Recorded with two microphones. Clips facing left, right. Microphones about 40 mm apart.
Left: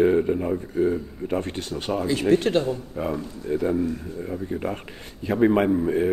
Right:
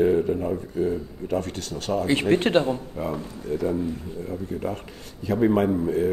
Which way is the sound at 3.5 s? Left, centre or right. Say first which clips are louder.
Left 2 dB; left.